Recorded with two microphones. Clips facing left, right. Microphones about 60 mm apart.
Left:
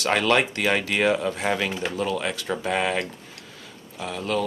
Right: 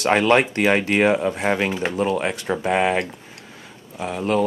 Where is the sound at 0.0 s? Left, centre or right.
Right.